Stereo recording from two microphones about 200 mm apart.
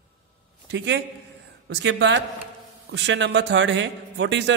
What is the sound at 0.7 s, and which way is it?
A man's voice, 65° right (ahead or behind).